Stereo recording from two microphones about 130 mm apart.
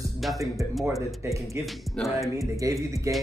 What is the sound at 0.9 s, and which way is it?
Speech, 25° right (ahead or behind).